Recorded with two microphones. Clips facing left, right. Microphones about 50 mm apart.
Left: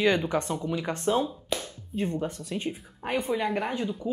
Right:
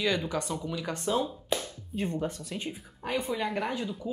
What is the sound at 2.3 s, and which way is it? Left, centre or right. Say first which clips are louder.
Speech: left 4 dB; left.